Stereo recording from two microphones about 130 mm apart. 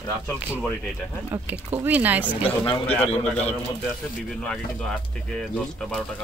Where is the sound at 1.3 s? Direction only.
15° right (ahead or behind).